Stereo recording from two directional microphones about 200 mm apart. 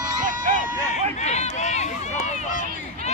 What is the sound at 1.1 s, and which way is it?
Run, 35° left (ahead or behind).